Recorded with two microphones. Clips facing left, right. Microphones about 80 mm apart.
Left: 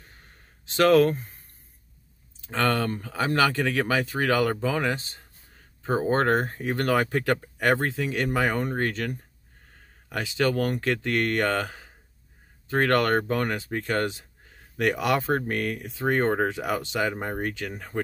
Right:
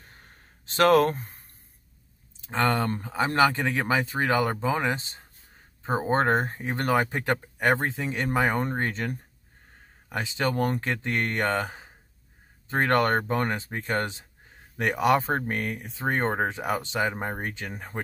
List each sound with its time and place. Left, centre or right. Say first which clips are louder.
0.7 s speech: left 1 dB; right
2.4 s speech: even; right
10.1 s speech: left 2 dB; right